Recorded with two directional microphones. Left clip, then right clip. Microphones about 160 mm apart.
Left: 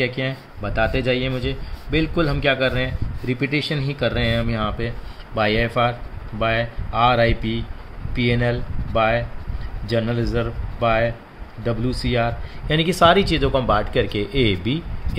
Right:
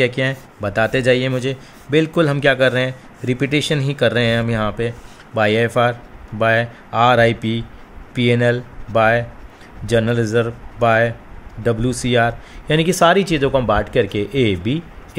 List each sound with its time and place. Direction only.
0.0 s a man's voice: 60° right (ahead or behind); by 14.8 s 25° right (ahead or behind)